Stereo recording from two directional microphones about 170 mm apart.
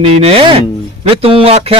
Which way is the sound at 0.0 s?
35° right (ahead or behind).